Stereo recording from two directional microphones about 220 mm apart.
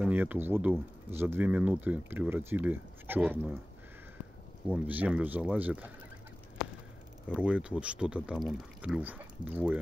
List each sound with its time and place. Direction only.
0.0 s speech: 10° right (ahead or behind)
4.6 s speech: 5° right (ahead or behind)
7.2 s speech: 5° right (ahead or behind)